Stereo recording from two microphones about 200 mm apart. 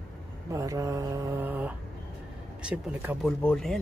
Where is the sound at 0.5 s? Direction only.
15° right (ahead or behind).